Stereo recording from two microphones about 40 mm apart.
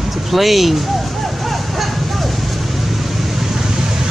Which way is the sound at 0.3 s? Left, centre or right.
Centre.